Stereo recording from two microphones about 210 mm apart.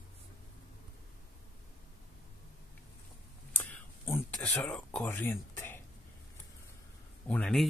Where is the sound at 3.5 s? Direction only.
10° left (ahead or behind).